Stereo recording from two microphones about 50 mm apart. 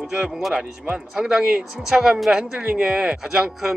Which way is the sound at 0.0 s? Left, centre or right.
Centre.